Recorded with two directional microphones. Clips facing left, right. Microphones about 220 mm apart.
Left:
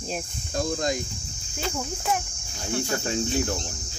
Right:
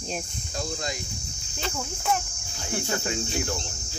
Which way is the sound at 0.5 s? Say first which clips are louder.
Left 6 dB; 50° left (ahead or behind).